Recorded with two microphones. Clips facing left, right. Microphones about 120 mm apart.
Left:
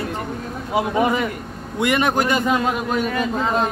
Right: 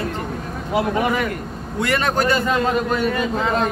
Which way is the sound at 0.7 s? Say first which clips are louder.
Left 1 dB; 20° left (ahead or behind).